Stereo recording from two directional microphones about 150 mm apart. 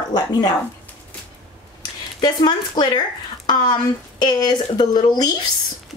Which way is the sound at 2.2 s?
30° left (ahead or behind).